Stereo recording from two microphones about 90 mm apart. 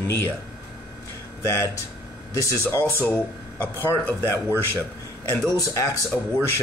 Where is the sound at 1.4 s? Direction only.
35° left (ahead or behind).